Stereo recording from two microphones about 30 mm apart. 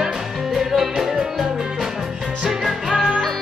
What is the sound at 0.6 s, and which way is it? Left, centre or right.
Music, centre.